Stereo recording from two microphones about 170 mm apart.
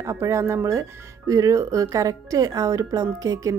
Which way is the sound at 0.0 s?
15° right (ahead or behind).